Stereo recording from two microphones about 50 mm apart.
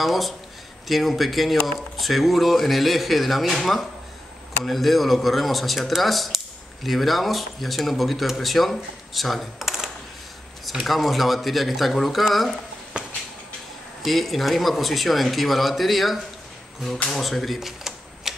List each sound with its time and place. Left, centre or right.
0.0 s a man's voice: centre
12.9 s a sound: right
14.0 s a man's voice: centre
17.2 s a man's voice: centre
17.6 s camera: centre